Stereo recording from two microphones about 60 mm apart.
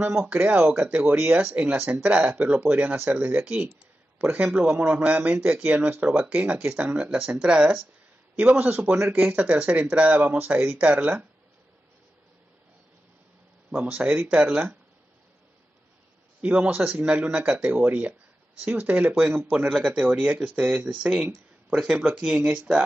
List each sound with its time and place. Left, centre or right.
0.0 s a man's voice: right
9.2 s speech: right
13.7 s speech: right
16.3 s a man's voice: right
20.5 s speech: centre